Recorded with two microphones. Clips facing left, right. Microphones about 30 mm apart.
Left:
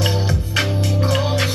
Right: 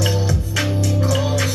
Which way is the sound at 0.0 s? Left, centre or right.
Left.